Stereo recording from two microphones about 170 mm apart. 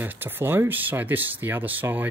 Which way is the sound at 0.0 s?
10° right (ahead or behind).